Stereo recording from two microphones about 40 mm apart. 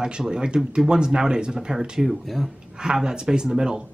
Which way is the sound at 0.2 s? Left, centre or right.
Centre.